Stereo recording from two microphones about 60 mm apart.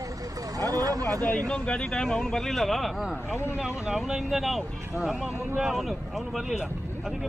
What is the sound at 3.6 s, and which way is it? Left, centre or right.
Speech, centre.